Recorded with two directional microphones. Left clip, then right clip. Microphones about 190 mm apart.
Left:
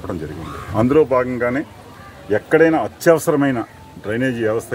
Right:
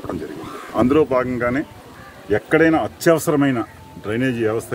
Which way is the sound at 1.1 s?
20° right (ahead or behind).